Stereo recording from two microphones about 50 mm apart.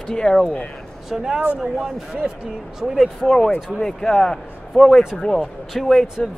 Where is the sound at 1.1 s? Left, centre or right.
Centre.